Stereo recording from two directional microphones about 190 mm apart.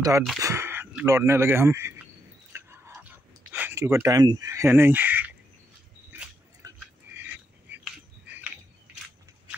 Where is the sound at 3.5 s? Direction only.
10° right (ahead or behind).